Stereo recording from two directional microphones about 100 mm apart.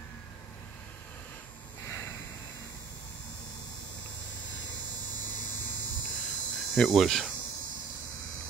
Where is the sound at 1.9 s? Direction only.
25° left (ahead or behind).